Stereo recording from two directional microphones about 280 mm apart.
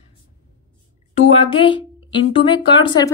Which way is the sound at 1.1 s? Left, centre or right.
Centre.